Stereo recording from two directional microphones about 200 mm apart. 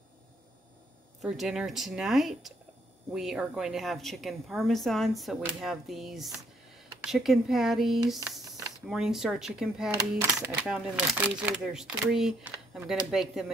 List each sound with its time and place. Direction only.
1.2 s speech: centre (ahead or behind)
8.5 s a sound: 15° right (ahead or behind)
8.8 s speech: centre (ahead or behind)